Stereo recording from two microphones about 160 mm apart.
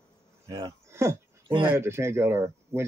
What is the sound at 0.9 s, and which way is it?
Speech, 15° right (ahead or behind).